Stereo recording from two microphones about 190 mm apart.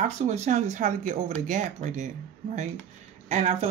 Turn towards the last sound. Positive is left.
turn(degrees=-35)  # may be behind; listen again after turning